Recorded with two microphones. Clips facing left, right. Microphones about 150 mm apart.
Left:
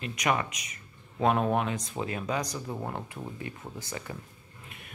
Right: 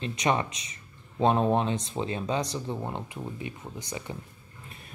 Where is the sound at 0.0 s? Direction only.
30° right (ahead or behind).